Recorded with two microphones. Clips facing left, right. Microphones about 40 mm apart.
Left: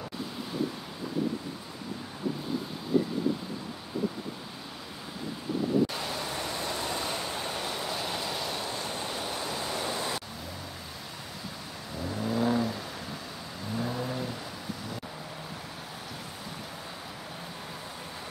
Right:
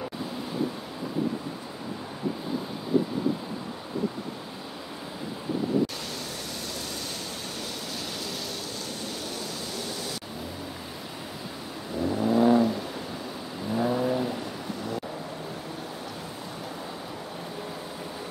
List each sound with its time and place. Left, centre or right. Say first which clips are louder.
6.6 s a sound: left 3 dB; left
9.0 s waves: left 1 dB; centre
12.0 s vehicle: right 7 dB; centre